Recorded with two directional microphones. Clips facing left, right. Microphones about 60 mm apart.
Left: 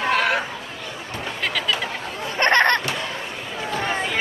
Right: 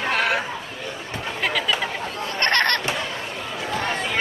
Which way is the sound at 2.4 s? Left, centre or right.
Centre.